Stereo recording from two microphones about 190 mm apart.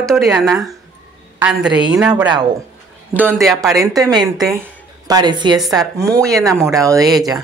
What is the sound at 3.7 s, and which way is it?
Speech, 20° right (ahead or behind).